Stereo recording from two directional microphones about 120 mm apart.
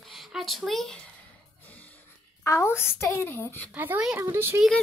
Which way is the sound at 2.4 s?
25° left (ahead or behind).